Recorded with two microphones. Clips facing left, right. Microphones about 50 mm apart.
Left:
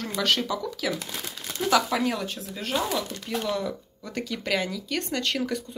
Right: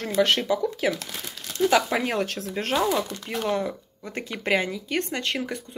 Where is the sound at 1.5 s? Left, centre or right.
Right.